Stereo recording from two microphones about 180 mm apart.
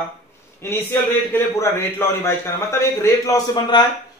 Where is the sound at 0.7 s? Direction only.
15° left (ahead or behind).